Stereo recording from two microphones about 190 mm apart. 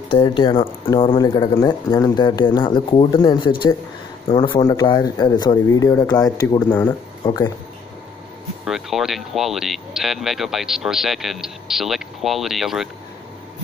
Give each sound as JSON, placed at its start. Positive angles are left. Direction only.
{"t": 0.1, "sound": "speech", "side_deg": 25}
{"t": 8.6, "sound": "speech", "side_deg": 0}